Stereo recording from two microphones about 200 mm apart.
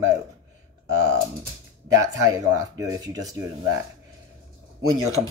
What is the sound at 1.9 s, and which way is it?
Speech, 15° right (ahead or behind).